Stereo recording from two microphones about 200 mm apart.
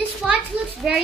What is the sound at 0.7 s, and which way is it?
Speech, centre (ahead or behind).